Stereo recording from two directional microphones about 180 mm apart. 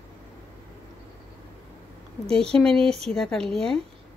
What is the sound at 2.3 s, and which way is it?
Speech, 5° left (ahead or behind).